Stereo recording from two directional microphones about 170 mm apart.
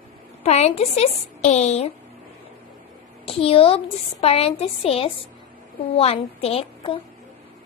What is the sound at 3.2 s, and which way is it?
A woman's voice, 35° left (ahead or behind).